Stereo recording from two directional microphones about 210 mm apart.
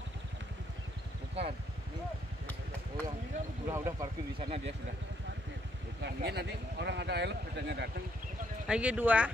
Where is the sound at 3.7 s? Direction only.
15° right (ahead or behind).